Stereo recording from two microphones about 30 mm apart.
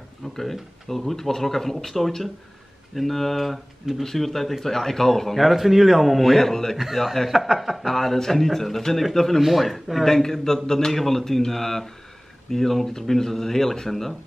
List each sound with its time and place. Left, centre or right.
0.4 s speech: centre
5.6 s speech: centre
6.2 s speech: centre
7.2 s speech: centre
9.4 s speech: centre
10.0 s speech: centre